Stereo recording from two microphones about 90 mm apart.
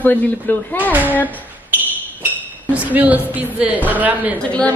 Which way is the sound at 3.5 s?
20° right (ahead or behind).